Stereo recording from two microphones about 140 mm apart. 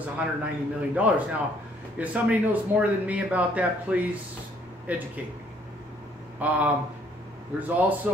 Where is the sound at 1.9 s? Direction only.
10° right (ahead or behind).